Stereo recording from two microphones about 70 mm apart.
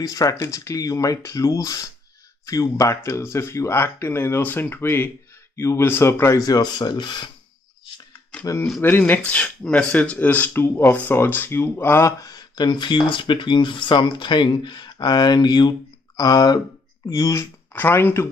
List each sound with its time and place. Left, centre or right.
0.0 s speech: left
6.4 s speech: left
8.3 s a sound: centre
8.8 s speech: left
12.2 s speech: left
13.9 s speech: left
16.2 s speech: left
17.7 s speech: left